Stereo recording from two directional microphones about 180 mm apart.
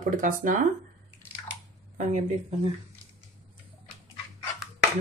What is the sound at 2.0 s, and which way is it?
Speech, 45° right (ahead or behind).